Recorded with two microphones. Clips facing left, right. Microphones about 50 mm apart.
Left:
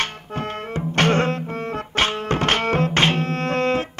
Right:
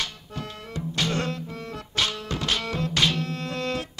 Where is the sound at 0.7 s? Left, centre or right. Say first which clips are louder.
Left 8 dB; left.